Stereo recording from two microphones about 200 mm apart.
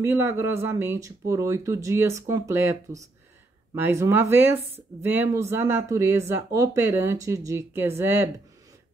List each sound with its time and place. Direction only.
0.0 s speech: 15° right (ahead or behind)